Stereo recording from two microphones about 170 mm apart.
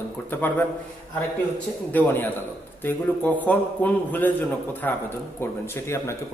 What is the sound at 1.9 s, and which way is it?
Speech, 10° left (ahead or behind).